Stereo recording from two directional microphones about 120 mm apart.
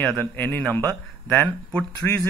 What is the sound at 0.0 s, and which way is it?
A man's voice, 10° left (ahead or behind).